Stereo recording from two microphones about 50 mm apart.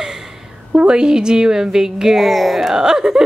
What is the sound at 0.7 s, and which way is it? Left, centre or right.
A woman's voice, centre.